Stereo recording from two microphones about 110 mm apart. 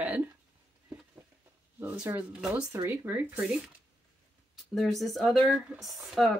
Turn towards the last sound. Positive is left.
turn(degrees=0)  # may be behind; listen again after turning